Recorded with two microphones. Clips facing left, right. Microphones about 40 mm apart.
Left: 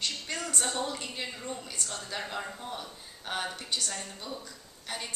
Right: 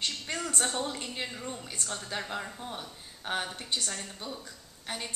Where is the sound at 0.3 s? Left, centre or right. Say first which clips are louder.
Right 2 dB; right.